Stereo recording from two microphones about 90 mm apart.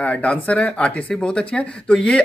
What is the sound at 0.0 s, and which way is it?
Speech, 15° left (ahead or behind).